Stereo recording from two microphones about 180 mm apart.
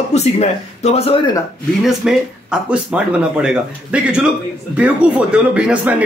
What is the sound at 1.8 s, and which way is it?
Speech, centre (ahead or behind).